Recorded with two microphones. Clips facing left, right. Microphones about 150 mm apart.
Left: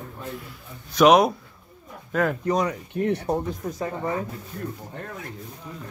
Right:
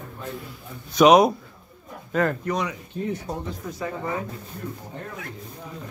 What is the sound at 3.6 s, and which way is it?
Speech, 45° left (ahead or behind).